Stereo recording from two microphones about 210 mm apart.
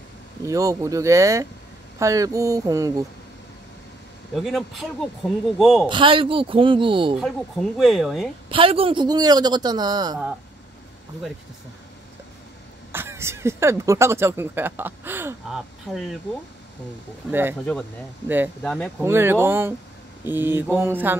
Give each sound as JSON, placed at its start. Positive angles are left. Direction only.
{"t": 0.5, "sound": "speech", "side_deg": -15}
{"t": 4.4, "sound": "speech", "side_deg": 0}
{"t": 5.2, "sound": "speech", "side_deg": 10}
{"t": 5.6, "sound": "speech", "side_deg": 0}
{"t": 5.9, "sound": "a man's voice", "side_deg": -25}
{"t": 7.2, "sound": "speech", "side_deg": 0}
{"t": 8.5, "sound": "a man's voice", "side_deg": -25}
{"t": 12.9, "sound": "speech", "side_deg": -10}
{"t": 17.3, "sound": "speech", "side_deg": -10}
{"t": 18.6, "sound": "speech", "side_deg": 5}
{"t": 19.0, "sound": "speech", "side_deg": -10}